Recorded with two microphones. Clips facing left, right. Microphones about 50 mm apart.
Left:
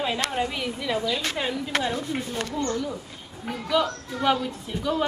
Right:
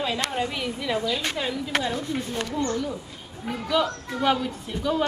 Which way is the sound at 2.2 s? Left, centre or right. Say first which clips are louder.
Right 1 dB; centre.